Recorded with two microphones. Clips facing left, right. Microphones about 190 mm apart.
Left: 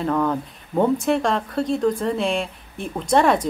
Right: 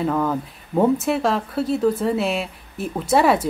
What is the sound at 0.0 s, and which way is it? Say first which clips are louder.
Speech: even; 5° right (ahead or behind).